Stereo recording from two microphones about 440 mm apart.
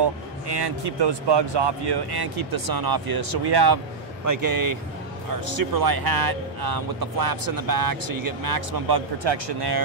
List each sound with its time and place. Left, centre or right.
0.0 s speech: right
4.3 s speech: right